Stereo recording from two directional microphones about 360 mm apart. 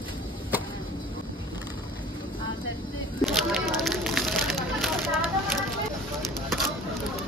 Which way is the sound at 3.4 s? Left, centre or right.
Centre.